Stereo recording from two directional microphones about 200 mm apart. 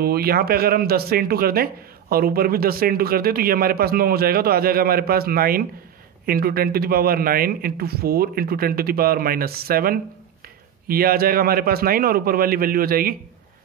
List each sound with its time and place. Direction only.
0.0 s speech: 50° right (ahead or behind)